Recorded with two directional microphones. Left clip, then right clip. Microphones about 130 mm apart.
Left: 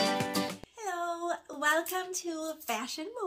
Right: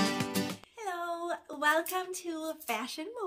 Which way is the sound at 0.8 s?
20° right (ahead or behind).